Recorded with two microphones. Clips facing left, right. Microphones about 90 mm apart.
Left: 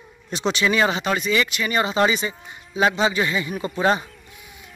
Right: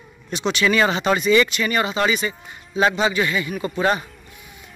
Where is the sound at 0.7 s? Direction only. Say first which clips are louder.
Right 3 dB; 10° left (ahead or behind).